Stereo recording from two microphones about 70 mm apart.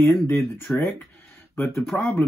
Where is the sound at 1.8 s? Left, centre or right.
Centre.